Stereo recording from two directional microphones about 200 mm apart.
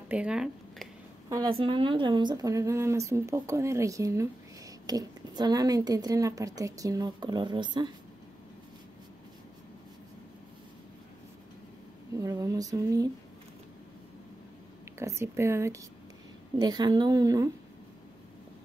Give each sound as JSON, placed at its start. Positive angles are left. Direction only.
{"t": 0.1, "sound": "speech", "side_deg": -5}
{"t": 1.3, "sound": "speech", "side_deg": -25}
{"t": 12.2, "sound": "speech", "side_deg": -15}
{"t": 15.0, "sound": "a woman's voice", "side_deg": -15}